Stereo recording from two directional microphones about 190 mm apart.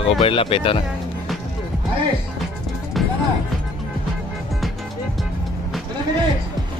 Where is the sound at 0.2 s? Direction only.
25° left (ahead or behind).